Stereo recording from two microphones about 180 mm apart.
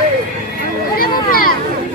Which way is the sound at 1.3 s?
55° left (ahead or behind).